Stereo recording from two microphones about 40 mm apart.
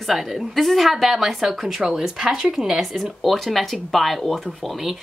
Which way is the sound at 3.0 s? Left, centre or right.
Centre.